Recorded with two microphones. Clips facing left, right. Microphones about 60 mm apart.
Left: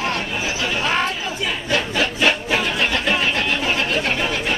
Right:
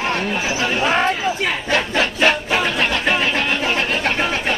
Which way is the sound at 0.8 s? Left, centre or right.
Right.